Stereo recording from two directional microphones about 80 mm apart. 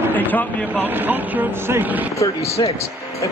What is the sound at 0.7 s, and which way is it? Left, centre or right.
Speech, right.